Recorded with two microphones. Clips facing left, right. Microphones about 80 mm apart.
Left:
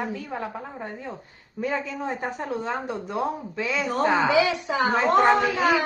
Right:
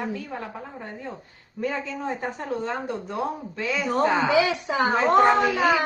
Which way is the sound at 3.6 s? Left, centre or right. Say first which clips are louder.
Even; centre.